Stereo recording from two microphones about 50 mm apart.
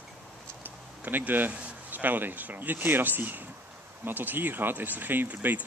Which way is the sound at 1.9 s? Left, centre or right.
Right.